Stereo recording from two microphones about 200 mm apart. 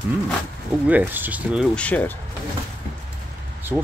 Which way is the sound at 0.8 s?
10° right (ahead or behind).